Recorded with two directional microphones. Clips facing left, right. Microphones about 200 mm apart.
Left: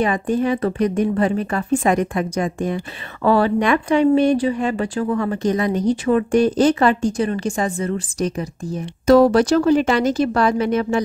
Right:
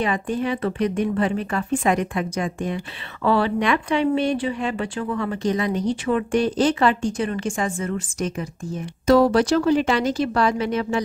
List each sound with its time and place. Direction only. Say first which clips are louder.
0.0 s speech: left 4 dB; 45° left (ahead or behind)